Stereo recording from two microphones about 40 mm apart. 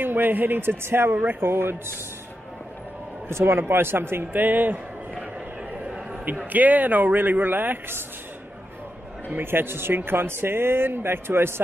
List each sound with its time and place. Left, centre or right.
0.0 s a man's voice: right
3.3 s a man's voice: right
3.6 s speech: right
4.3 s speech: right
6.5 s speech: right
9.4 s speech: right